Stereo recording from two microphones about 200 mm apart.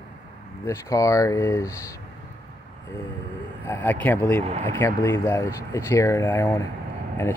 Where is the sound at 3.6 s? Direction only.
10° left (ahead or behind).